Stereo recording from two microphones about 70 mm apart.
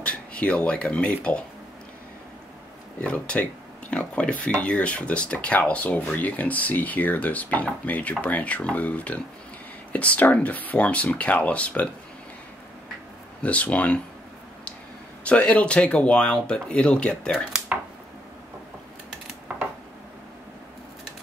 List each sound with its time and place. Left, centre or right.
0.0 s speech: centre
3.0 s speech: centre
13.4 s speech: centre
15.2 s speech: centre